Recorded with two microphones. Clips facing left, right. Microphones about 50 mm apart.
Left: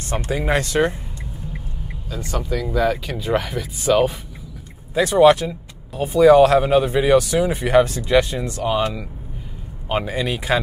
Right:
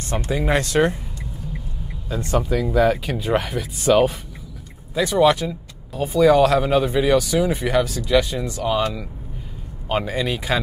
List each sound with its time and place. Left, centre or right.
0.2 s speech: centre
2.3 s speech: centre
4.9 s speech: left
8.6 s speech: centre